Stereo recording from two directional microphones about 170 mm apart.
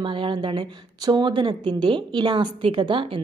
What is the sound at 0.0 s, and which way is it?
A woman's voice, 30° right (ahead or behind).